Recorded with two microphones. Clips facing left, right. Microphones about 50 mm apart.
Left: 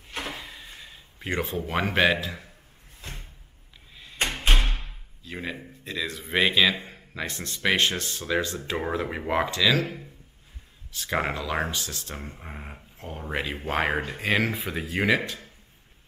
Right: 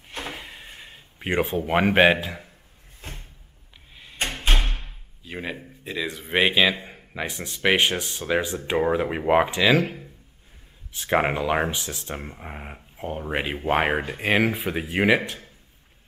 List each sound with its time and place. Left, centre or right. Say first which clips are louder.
0.3 s drawer open or close: right 1 dB; right
1.7 s speech: right 5 dB; right
4.7 s a sound: even; centre
5.9 s speech: right 2 dB; centre